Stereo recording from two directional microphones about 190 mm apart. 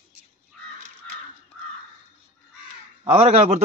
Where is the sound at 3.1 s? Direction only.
35° right (ahead or behind).